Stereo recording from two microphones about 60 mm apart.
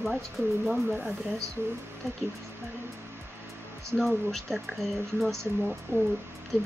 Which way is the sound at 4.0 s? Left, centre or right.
Centre.